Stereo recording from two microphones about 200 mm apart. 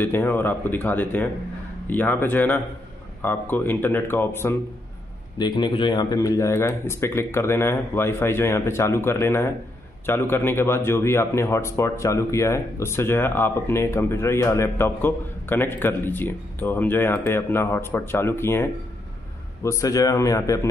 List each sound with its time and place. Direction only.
0.0 s a man's voice: 10° left (ahead or behind)